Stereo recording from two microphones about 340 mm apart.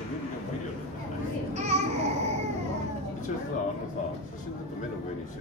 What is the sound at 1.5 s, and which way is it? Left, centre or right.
Babbling, centre.